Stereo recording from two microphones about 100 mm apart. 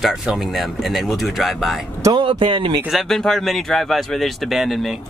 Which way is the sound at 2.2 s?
60° right (ahead or behind).